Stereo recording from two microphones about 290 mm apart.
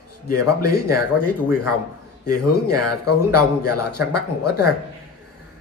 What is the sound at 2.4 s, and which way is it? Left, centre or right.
Speech, left.